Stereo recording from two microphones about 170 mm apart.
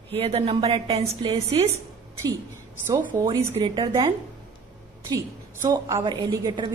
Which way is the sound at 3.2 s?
20° right (ahead or behind).